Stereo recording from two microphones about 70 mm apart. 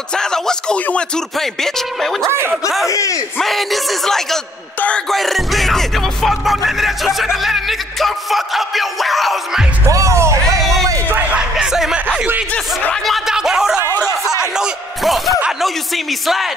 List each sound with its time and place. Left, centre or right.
0.1 s speech: centre
1.3 s music: centre
2.2 s speech: right
2.9 s speech: left
3.3 s music: centre
4.7 s speech: centre
5.1 s music: centre
9.8 s music: right
11.1 s a sound: right
11.5 s a sound: centre
15.6 s music: centre